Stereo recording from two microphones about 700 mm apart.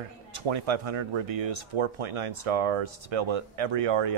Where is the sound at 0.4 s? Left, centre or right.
Right.